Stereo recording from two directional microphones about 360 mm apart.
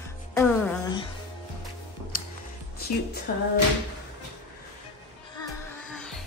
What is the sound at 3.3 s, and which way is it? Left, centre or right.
Music, left.